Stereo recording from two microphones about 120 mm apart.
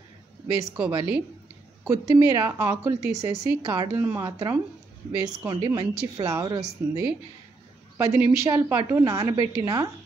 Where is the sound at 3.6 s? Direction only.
35° right (ahead or behind).